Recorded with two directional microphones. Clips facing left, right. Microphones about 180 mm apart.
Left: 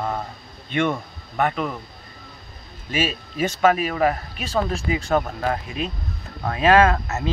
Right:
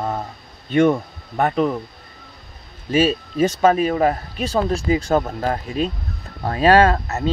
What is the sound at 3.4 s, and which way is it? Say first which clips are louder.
Speech: right 3 dB; 30° right (ahead or behind).